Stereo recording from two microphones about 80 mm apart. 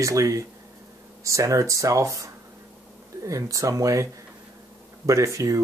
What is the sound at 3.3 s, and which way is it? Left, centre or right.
Speech, right.